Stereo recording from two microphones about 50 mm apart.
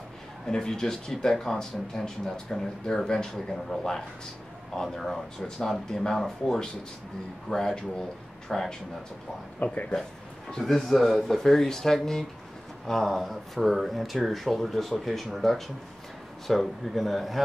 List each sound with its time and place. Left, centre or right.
0.5 s speech: centre
9.6 s speech: left
10.6 s speech: centre